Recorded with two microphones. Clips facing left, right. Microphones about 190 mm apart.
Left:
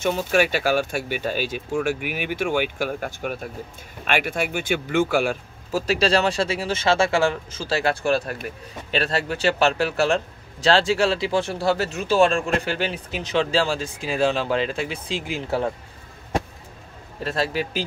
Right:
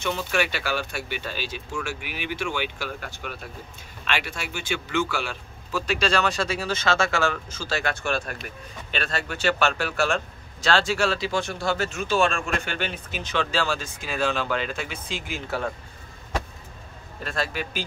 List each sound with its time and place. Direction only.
0.0 s a man's voice: 45° left (ahead or behind); by 15.7 s 25° left (ahead or behind)
17.2 s a man's voice: 30° left (ahead or behind)